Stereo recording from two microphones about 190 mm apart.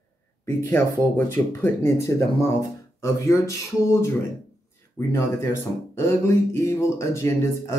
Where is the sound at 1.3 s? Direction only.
10° left (ahead or behind).